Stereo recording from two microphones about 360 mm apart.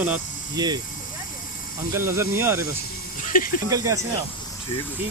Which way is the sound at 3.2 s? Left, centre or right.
Left.